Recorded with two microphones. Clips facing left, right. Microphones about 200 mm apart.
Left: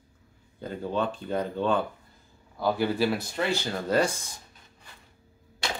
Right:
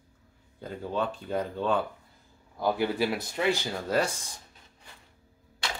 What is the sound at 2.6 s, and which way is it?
A man's voice, 15° right (ahead or behind).